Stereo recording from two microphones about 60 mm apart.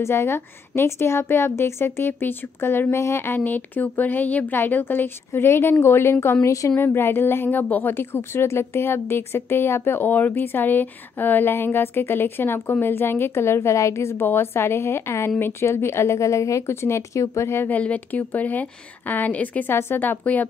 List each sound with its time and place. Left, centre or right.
0.0 s a woman's voice: left
6.4 s a woman's voice: left
6.8 s a woman's voice: left
17.6 s a woman's voice: left
19.7 s a woman's voice: left
20.0 s a woman's voice: left